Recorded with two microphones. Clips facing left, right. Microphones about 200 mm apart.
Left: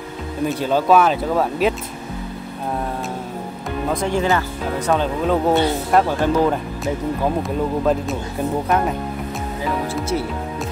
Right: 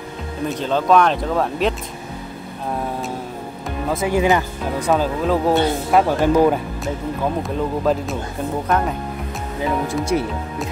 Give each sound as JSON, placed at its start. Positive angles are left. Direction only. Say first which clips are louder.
{"t": 0.5, "sound": "speech", "louder": "left 1 dB", "side_deg": 10}
{"t": 3.9, "sound": "speech", "louder": "right 2 dB", "side_deg": -5}
{"t": 6.0, "sound": "speech", "louder": "right 3 dB", "side_deg": -10}
{"t": 7.4, "sound": "speech", "louder": "left 1 dB", "side_deg": 0}
{"t": 10.1, "sound": "speech", "louder": "right 3 dB", "side_deg": -15}